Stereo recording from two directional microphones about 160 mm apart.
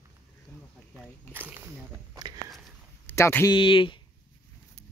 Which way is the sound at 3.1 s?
15° left (ahead or behind).